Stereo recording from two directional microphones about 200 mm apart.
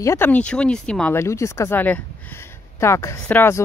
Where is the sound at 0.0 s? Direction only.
10° left (ahead or behind).